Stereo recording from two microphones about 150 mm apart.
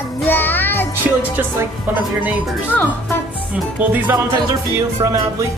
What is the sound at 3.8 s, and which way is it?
Music, 10° right (ahead or behind).